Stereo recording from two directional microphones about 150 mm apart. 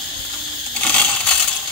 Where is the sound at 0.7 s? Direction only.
10° left (ahead or behind).